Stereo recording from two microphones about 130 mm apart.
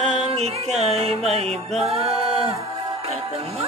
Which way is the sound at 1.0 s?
50° right (ahead or behind).